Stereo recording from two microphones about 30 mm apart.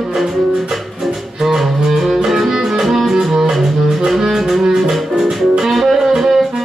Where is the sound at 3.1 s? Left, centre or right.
Centre.